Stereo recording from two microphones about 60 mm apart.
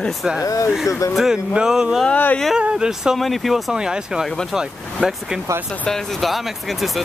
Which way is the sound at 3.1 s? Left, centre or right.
Centre.